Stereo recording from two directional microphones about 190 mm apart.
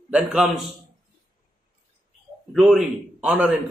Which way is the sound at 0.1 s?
5° right (ahead or behind).